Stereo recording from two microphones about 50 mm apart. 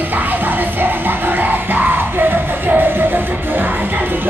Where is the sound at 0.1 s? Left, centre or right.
Right.